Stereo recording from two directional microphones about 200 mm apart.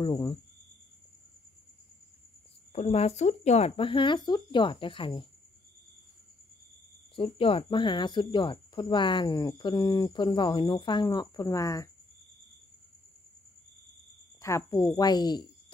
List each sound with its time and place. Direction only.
0.0 s speech: 20° left (ahead or behind)
2.7 s speech: 30° left (ahead or behind)
7.2 s speech: 25° left (ahead or behind)
14.4 s speech: 15° left (ahead or behind)